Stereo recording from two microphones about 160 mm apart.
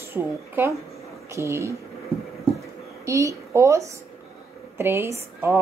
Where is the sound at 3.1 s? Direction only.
20° right (ahead or behind).